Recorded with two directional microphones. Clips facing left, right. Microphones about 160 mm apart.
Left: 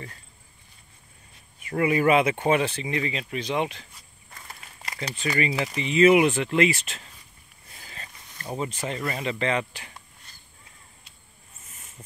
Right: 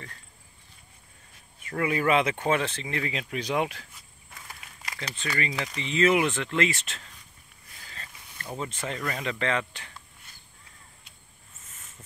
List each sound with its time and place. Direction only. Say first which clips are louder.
1.6 s speech: left 5 dB; 10° left (ahead or behind)
3.1 s speech: left 1 dB; 5° right (ahead or behind)
4.3 s walk: left 1 dB; centre (ahead or behind)
4.9 s speech: left 5 dB; 15° left (ahead or behind)
7.7 s speech: left 2 dB; 20° left (ahead or behind)